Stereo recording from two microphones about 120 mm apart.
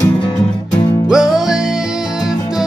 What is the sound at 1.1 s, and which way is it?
Music, 5° right (ahead or behind).